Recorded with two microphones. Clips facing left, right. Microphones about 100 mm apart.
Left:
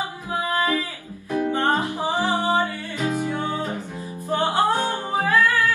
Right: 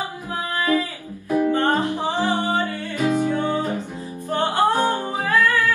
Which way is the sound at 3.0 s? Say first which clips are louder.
Right 4 dB; 20° right (ahead or behind).